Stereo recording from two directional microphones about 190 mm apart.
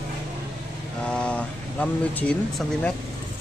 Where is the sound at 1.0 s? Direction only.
5° left (ahead or behind).